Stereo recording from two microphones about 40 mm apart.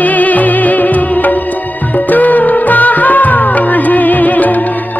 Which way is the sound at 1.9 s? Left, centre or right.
Left.